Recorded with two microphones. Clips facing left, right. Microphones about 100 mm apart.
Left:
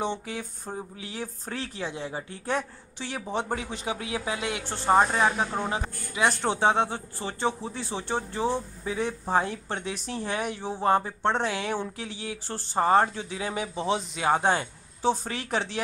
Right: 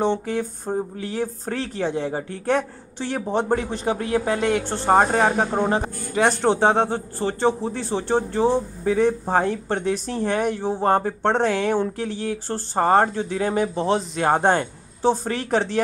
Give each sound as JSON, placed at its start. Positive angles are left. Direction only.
{"t": 0.0, "sound": "speech", "side_deg": -55}